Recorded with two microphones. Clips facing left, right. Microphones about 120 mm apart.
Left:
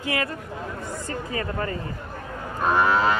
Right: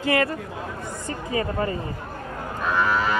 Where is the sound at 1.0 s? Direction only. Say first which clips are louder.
Right 4 dB; 20° right (ahead or behind).